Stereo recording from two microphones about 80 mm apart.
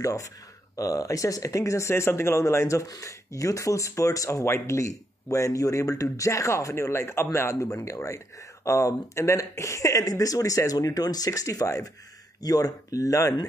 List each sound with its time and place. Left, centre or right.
0.0 s speech: left